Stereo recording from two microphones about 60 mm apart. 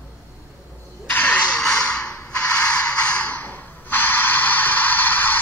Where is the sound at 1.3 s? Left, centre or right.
Centre.